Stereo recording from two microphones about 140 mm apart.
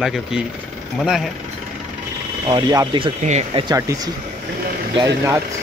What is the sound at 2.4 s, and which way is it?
Speech, 30° right (ahead or behind).